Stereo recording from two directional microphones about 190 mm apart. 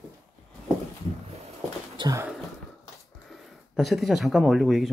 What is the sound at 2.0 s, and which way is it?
Speech, 20° right (ahead or behind).